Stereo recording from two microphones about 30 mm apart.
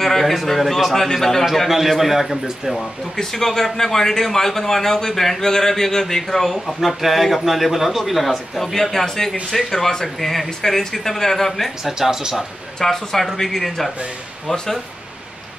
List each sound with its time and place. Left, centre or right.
0.0 s a man's voice: centre
1.7 s a man's voice: centre
2.7 s a man's voice: centre
6.8 s a man's voice: centre
11.8 s speech: centre
12.8 s a man's voice: centre